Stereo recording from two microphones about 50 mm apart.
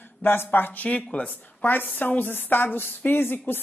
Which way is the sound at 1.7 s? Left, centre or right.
Left.